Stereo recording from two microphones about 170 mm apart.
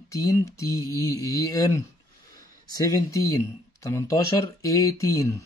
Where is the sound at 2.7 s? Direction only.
20° left (ahead or behind).